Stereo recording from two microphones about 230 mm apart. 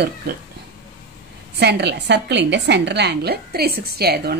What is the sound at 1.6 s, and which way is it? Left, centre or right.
A woman's voice, right.